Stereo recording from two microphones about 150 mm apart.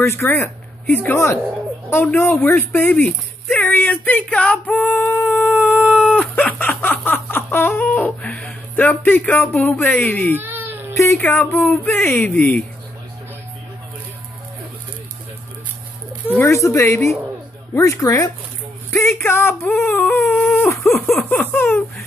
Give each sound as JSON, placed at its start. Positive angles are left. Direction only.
{"t": 0.0, "sound": "speech", "side_deg": 15}
{"t": 5.9, "sound": "a sound", "side_deg": 10}
{"t": 10.3, "sound": "baby cry", "side_deg": -15}
{"t": 11.0, "sound": "speech", "side_deg": 15}
{"t": 16.3, "sound": "speech", "side_deg": 15}